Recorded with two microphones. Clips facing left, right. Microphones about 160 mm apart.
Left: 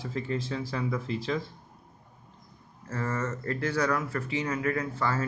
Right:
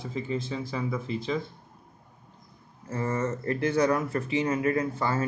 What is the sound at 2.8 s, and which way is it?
Speech, 15° right (ahead or behind).